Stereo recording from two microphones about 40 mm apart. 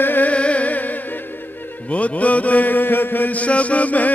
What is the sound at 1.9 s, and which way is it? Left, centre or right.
Mantra, left.